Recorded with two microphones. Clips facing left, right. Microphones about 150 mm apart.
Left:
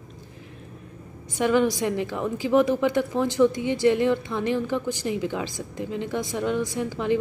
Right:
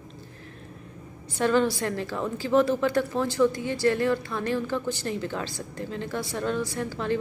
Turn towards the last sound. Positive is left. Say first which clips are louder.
# left 3 dB
turn(degrees=15)  # may be behind; listen again after turning